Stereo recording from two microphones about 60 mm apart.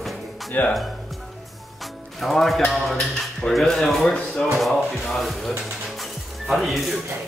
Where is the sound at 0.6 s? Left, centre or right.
Left.